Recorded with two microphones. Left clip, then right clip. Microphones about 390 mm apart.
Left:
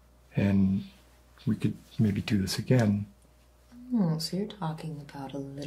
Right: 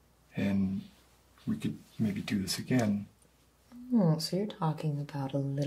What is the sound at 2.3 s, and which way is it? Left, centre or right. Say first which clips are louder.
Speech: left 5 dB; left.